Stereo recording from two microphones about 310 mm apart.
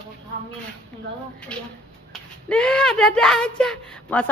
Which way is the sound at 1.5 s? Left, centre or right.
Centre.